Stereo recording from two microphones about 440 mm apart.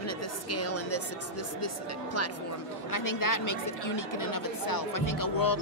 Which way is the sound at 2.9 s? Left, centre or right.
Left.